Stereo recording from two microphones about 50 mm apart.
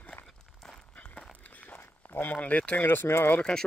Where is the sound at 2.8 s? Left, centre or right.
Left.